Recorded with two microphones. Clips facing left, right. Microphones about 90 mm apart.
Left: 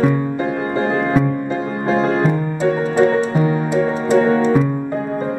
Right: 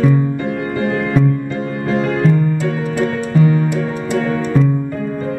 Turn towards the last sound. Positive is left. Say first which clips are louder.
# left 4 dB
turn(degrees=25)  # may be behind; listen again after turning